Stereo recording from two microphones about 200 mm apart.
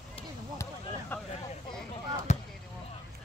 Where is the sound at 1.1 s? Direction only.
10° left (ahead or behind).